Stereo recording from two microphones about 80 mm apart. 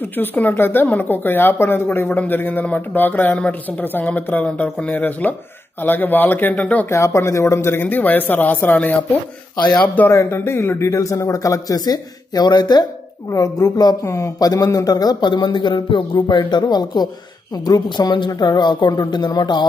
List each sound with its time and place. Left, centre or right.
0.2 s a woman's voice: left
6.9 s a woman's voice: left
10.0 s a man's voice: left
13.3 s a man's voice: left
14.0 s a woman's voice: left